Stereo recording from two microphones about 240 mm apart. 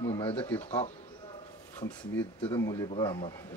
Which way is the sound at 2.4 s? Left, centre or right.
Centre.